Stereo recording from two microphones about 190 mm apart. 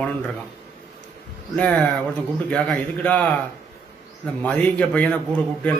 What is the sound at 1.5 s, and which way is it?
A man's voice, 5° left (ahead or behind).